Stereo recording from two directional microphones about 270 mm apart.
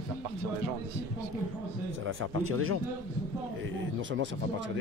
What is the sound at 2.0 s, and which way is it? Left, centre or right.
Speech, right.